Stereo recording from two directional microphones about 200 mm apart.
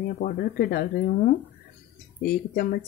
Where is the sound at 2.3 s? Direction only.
50° left (ahead or behind).